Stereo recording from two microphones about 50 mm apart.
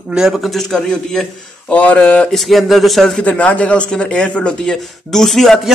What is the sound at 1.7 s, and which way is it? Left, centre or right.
Speech, left.